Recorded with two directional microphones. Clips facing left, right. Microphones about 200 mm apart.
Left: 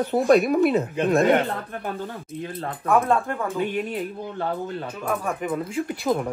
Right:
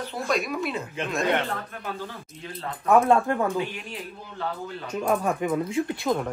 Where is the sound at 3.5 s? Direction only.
55° left (ahead or behind).